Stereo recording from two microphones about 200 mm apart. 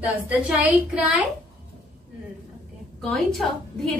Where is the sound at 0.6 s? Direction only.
5° right (ahead or behind).